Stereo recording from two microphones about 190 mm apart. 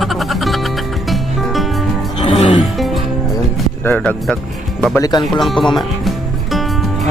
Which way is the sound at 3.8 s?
10° left (ahead or behind).